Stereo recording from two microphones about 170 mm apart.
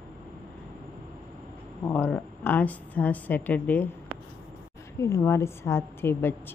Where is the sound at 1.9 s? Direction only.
10° left (ahead or behind).